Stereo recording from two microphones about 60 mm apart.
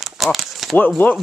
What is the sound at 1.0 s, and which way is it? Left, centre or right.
Speech, left.